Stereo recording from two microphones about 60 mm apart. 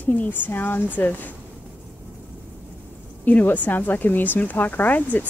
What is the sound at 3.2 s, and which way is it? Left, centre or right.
Speech, left.